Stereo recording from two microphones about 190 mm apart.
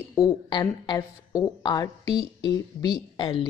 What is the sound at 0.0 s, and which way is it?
Speech, 15° left (ahead or behind).